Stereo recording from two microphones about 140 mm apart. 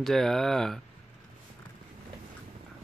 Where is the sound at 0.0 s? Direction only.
5° left (ahead or behind).